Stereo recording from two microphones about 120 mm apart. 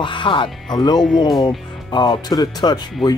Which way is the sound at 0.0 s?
40° left (ahead or behind).